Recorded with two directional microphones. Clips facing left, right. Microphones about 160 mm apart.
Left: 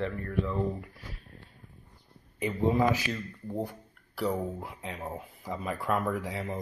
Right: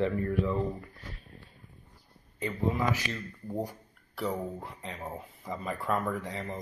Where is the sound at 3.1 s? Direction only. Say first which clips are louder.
Left 1 dB; 10° right (ahead or behind).